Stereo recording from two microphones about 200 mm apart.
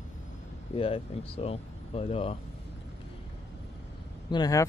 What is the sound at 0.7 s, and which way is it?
Speech, 25° left (ahead or behind).